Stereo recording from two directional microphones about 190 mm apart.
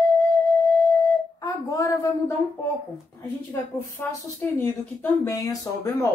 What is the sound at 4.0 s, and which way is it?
A woman's voice, 10° left (ahead or behind).